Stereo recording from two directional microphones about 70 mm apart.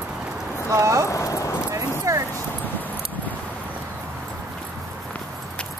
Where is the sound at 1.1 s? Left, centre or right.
Left.